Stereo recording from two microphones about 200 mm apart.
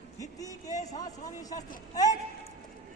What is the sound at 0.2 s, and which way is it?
A man's voice, 15° left (ahead or behind).